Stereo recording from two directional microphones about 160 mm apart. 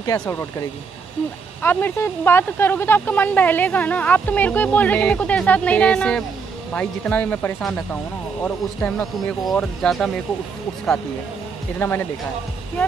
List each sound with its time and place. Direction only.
0.2 s speech: 15° left (ahead or behind)
11.8 s speech: 10° left (ahead or behind)